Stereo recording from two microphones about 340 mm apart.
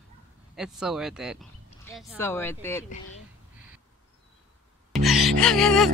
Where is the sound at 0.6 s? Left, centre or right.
Centre.